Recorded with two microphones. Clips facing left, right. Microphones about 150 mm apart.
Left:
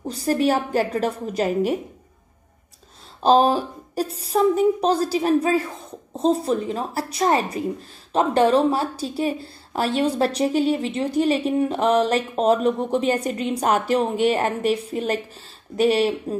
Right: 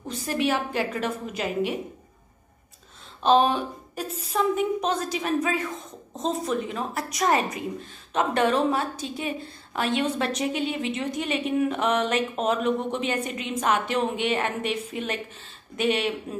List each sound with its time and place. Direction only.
0.0 s a woman's voice: 35° left (ahead or behind)
3.2 s a woman's voice: 35° left (ahead or behind)